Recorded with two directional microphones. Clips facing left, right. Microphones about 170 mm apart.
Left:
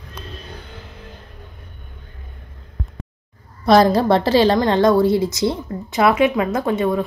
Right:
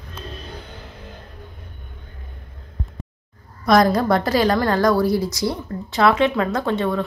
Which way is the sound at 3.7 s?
30° left (ahead or behind).